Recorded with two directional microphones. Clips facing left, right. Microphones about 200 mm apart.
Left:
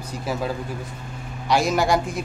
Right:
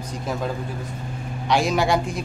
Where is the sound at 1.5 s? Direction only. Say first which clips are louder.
Even; 5° left (ahead or behind).